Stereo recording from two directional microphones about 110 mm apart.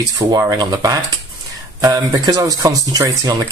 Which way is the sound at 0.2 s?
35° right (ahead or behind).